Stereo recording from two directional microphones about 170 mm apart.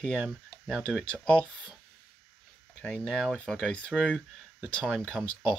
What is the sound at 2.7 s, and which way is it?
Speech, 5° left (ahead or behind).